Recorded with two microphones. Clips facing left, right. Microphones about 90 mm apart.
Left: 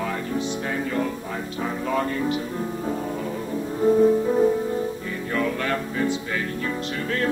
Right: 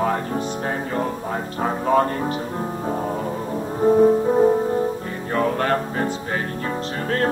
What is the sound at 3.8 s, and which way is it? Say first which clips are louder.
Music: right 3 dB; 30° right (ahead or behind).